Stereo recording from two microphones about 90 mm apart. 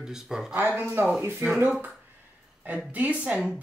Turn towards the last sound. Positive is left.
turn(degrees=-10)  # may be behind; listen again after turning